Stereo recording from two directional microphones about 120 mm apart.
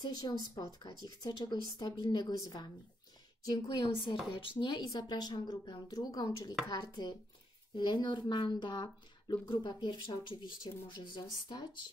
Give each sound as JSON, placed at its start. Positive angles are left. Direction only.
{"t": 0.0, "sound": "speech", "side_deg": 35}